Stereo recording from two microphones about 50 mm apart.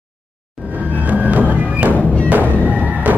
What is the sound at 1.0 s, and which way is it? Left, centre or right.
Music, right.